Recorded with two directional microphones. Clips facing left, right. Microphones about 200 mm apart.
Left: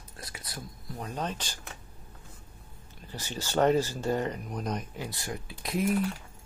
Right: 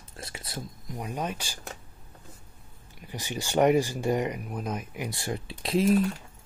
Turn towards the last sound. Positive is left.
turn(degrees=-30)  # may be behind; listen again after turning